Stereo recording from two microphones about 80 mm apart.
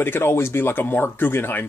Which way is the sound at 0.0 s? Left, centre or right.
Left.